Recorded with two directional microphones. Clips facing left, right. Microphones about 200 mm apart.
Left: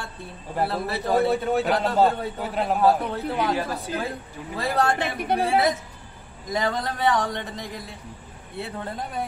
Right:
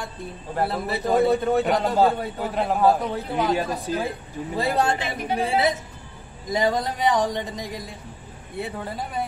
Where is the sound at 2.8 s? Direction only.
15° right (ahead or behind).